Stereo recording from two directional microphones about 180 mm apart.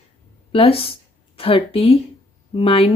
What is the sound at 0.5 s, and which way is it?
A woman's voice, 30° left (ahead or behind).